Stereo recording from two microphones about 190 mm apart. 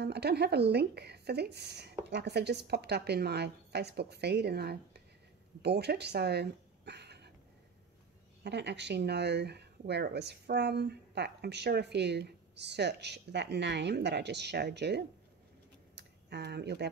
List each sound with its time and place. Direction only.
0.0 s speech: 60° right (ahead or behind)
8.5 s speech: 65° right (ahead or behind)
15.9 s a sound: 65° right (ahead or behind)